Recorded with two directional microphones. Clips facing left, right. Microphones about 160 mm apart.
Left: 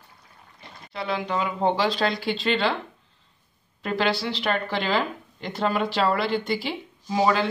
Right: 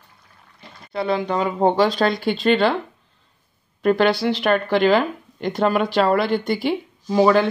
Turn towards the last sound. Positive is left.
turn(degrees=-55)  # may be behind; listen again after turning